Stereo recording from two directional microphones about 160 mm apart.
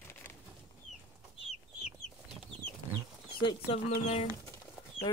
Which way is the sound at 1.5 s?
Centre (ahead or behind).